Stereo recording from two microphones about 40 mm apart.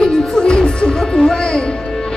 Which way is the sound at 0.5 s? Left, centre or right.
Centre.